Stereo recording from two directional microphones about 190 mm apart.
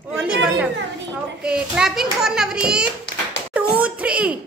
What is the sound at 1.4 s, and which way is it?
Speech, 5° right (ahead or behind).